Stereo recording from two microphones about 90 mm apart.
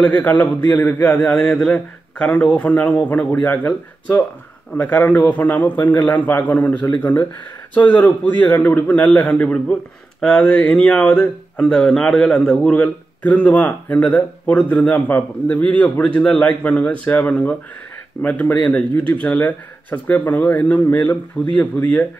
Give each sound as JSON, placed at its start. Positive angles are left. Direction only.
{"t": 0.0, "sound": "speech", "side_deg": 15}
{"t": 1.2, "sound": "speech", "side_deg": 10}